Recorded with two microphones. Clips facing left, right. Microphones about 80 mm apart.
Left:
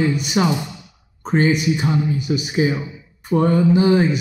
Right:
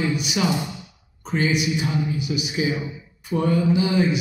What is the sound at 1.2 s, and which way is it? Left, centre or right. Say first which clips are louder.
A man's voice: left 5 dB; left.